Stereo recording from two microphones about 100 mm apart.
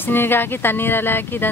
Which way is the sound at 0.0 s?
20° left (ahead or behind).